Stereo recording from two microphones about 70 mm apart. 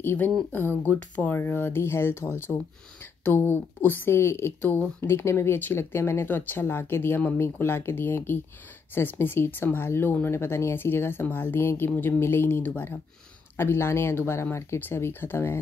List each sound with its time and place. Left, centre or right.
0.0 s speech: left
1.4 s speech: left
4.6 s speech: left